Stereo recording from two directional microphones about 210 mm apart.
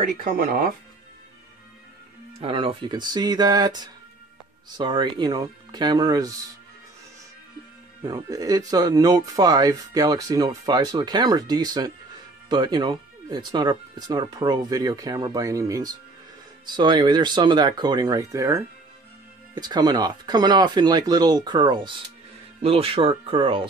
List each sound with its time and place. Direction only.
0.2 s speech: 40° right (ahead or behind)
2.4 s speech: 25° right (ahead or behind)
8.0 s speech: 20° right (ahead or behind)